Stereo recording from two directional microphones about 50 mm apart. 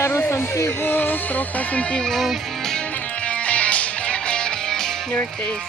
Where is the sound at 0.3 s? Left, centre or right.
Left.